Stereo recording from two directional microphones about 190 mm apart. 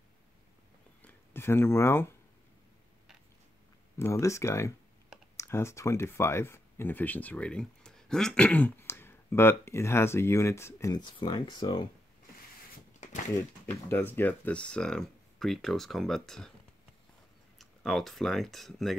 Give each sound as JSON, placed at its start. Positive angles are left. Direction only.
{"t": 1.0, "sound": "speech", "side_deg": 10}
{"t": 4.0, "sound": "speech", "side_deg": 15}
{"t": 13.7, "sound": "speech", "side_deg": 10}
{"t": 17.6, "sound": "speech", "side_deg": 0}